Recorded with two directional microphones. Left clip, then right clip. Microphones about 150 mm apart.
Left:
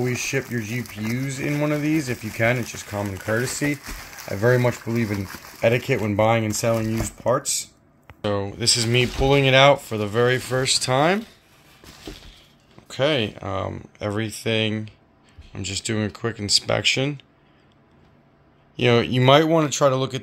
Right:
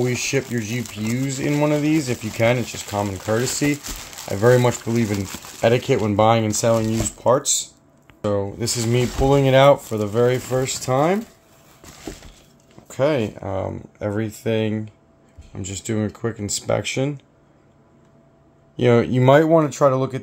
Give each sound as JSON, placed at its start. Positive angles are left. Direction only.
{"t": 0.4, "sound": "speech", "side_deg": -10}
{"t": 0.7, "sound": "speech", "side_deg": -25}
{"t": 8.2, "sound": "speech", "side_deg": -15}
{"t": 12.9, "sound": "speech", "side_deg": -15}
{"t": 18.8, "sound": "speech", "side_deg": -25}